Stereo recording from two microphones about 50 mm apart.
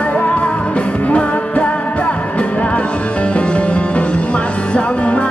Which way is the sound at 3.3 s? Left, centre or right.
Left.